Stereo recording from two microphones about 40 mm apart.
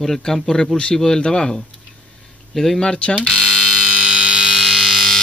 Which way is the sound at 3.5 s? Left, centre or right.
Centre.